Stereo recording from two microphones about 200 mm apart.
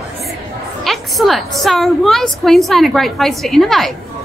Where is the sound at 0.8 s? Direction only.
Centre (ahead or behind).